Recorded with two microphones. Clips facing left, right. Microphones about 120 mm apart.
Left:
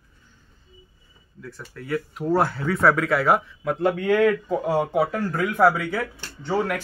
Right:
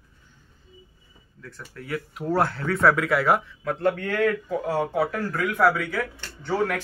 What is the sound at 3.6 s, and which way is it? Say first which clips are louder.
Speech: left 3 dB; 10° left (ahead or behind).